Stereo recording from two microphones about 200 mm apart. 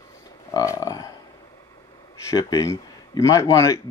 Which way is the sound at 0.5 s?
15° left (ahead or behind).